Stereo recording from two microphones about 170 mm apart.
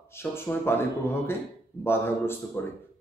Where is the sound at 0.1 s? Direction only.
15° left (ahead or behind).